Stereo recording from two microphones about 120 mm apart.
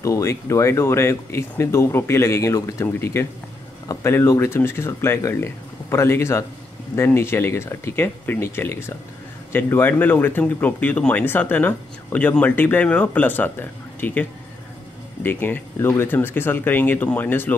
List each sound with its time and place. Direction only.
0.0 s speech: 25° left (ahead or behind)
15.2 s speech: 15° left (ahead or behind)